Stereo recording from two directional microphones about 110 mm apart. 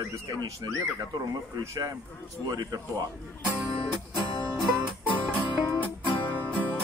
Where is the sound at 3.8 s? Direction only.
55° left (ahead or behind).